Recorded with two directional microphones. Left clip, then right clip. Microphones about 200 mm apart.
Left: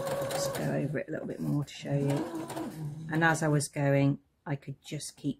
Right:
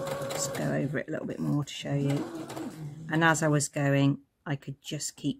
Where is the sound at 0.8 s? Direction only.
25° right (ahead or behind).